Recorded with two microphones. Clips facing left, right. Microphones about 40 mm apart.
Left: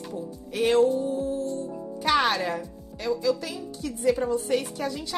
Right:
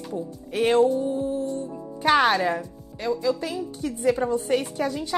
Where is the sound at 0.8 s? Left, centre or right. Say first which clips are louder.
Right 1 dB; right.